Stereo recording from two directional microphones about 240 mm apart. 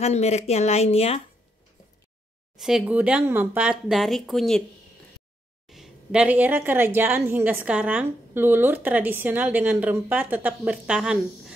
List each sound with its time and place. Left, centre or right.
0.0 s speech: left
2.6 s speech: centre
5.7 s a woman's voice: centre